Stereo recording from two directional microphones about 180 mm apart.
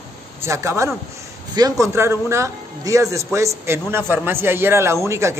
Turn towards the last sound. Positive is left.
turn(degrees=-15)  # may be behind; listen again after turning